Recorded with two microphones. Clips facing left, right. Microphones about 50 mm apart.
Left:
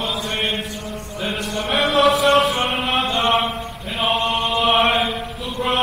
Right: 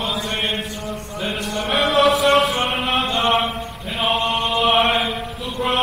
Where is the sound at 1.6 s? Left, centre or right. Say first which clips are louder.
Even; centre.